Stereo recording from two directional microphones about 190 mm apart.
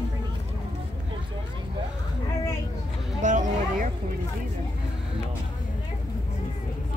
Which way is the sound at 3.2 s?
40° right (ahead or behind).